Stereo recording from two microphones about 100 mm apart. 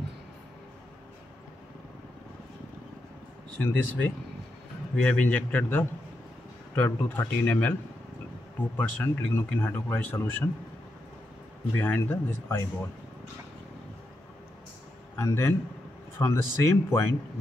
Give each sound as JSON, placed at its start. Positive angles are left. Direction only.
{"t": 3.5, "sound": "a man's voice", "side_deg": 20}
{"t": 8.7, "sound": "speech", "side_deg": 20}
{"t": 11.8, "sound": "speech", "side_deg": 20}
{"t": 15.1, "sound": "speech", "side_deg": 25}